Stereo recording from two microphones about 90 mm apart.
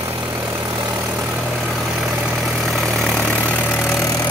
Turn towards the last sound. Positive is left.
turn(degrees=30)  # may be behind; listen again after turning